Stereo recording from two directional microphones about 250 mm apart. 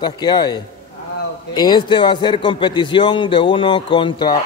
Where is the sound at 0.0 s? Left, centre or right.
Centre.